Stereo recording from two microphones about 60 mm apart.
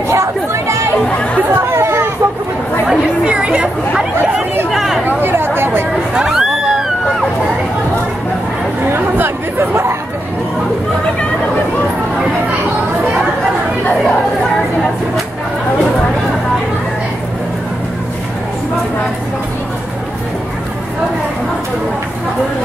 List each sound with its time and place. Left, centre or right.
0.1 s chatter: right
2.9 s chatter: centre
4.6 s a sound: centre
5.0 s chatter: right
6.1 s a sound: centre
8.9 s chatter: right